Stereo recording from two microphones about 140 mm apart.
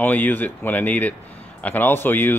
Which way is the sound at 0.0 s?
15° left (ahead or behind).